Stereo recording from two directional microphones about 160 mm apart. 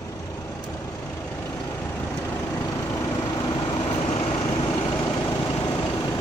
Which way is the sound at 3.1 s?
25° left (ahead or behind).